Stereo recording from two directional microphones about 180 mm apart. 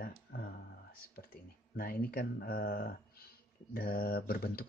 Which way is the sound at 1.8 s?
55° left (ahead or behind).